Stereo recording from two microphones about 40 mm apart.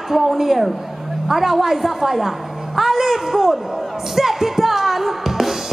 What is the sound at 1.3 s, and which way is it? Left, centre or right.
A woman's voice, centre.